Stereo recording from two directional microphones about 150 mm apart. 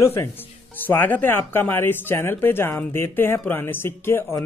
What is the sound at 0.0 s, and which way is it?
Speech, 15° left (ahead or behind).